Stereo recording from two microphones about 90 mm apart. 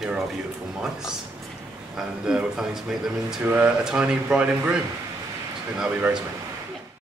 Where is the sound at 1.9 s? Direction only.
10° right (ahead or behind).